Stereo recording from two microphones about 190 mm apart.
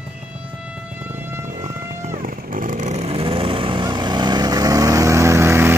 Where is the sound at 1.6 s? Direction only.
45° right (ahead or behind); by 5.7 s 15° right (ahead or behind).